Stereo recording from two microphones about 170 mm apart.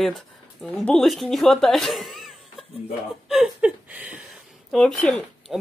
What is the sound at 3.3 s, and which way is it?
Speech, centre (ahead or behind).